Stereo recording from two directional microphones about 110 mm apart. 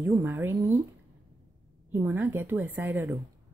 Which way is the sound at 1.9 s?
20° right (ahead or behind).